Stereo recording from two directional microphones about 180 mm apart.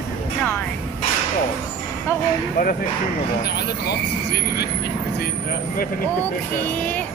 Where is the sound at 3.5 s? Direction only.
60° left (ahead or behind).